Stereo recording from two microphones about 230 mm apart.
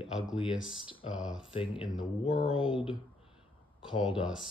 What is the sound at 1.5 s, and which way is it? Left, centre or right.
Speech, left.